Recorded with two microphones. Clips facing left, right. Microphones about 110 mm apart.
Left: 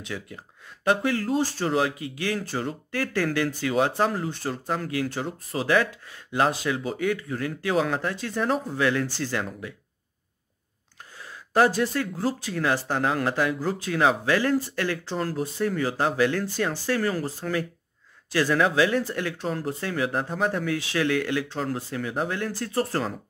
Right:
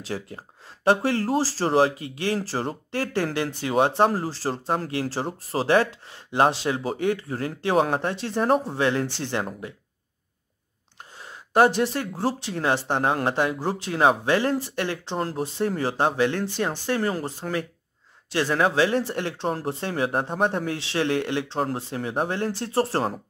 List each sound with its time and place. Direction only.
0.0 s speech: 35° right (ahead or behind)
11.1 s speech: 25° right (ahead or behind)